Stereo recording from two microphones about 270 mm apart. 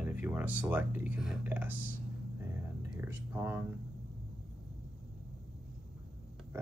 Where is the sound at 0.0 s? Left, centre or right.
Centre.